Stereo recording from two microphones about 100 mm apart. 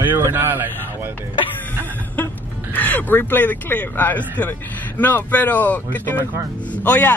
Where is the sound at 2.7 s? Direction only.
20° left (ahead or behind).